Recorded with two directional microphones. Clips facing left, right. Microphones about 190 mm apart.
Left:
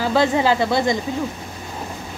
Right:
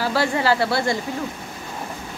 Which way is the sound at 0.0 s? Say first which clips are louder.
Left 3 dB; 20° left (ahead or behind).